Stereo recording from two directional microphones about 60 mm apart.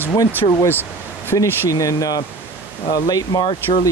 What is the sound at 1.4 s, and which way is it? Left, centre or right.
Speech, left.